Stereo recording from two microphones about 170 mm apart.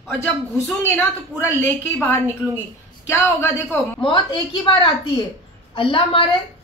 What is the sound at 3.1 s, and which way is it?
Speech, 20° left (ahead or behind).